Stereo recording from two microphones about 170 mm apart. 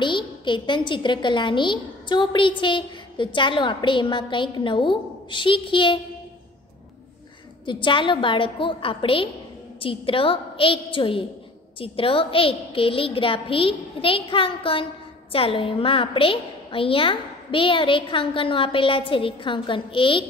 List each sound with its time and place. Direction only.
0.0 s a woman's voice: 30° left (ahead or behind)
7.6 s a woman's voice: 30° left (ahead or behind)